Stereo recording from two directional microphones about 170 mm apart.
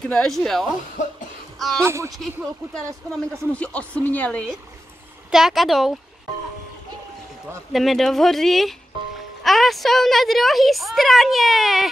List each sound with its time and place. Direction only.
0.0 s a woman's voice: 5° left (ahead or behind)
1.0 s cough: 45° left (ahead or behind)
1.8 s speech: 15° right (ahead or behind)
2.1 s speech: centre (ahead or behind)
5.3 s a woman's voice: centre (ahead or behind)
7.7 s a woman's voice: centre (ahead or behind)